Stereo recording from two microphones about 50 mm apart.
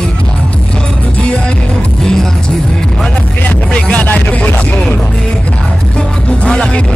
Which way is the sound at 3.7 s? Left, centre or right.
Left.